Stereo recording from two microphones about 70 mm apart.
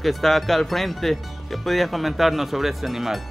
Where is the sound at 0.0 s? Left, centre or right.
Centre.